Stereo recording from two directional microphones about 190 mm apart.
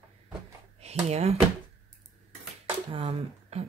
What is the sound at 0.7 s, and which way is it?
Speech, 35° right (ahead or behind).